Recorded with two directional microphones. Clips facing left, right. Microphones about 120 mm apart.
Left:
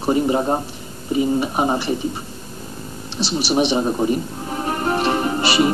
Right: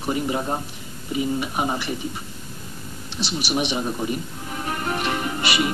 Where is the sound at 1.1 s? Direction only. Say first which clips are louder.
Left 6 dB; 35° left (ahead or behind).